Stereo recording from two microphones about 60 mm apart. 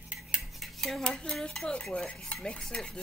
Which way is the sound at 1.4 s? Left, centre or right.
Centre.